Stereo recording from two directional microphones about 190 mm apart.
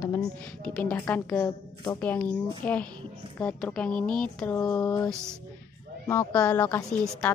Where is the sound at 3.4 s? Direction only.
5° left (ahead or behind).